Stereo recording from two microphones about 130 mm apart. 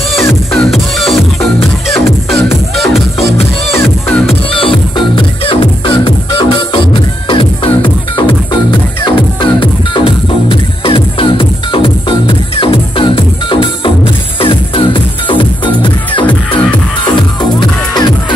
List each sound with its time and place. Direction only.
0.3 s music: centre (ahead or behind)
4.3 s music: 45° left (ahead or behind)
17.4 s music: 35° left (ahead or behind)